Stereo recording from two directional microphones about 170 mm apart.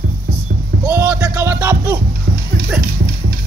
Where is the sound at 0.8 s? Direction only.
20° right (ahead or behind).